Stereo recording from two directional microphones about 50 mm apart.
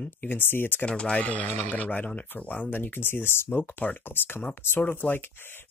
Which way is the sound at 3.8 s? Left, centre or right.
Left.